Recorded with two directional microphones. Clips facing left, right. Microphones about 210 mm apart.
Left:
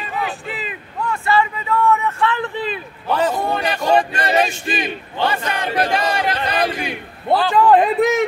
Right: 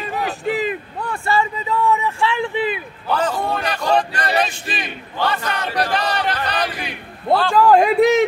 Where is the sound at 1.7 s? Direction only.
15° right (ahead or behind).